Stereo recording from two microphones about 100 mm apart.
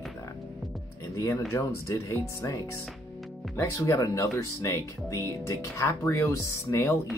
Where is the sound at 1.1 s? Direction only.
30° left (ahead or behind).